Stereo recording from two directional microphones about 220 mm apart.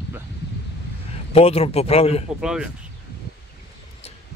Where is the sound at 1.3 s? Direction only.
30° left (ahead or behind).